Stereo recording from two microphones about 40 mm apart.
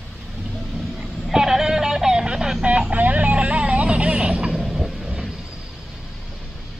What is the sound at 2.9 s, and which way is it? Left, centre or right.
Vehicle, right.